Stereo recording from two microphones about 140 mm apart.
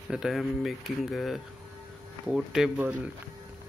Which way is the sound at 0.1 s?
5° right (ahead or behind).